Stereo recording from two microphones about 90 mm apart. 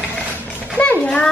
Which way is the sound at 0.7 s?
15° left (ahead or behind).